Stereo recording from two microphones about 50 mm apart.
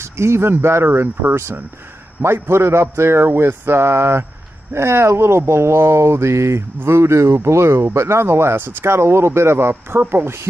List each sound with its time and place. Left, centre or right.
0.0 s speech: right
6.8 s speech: right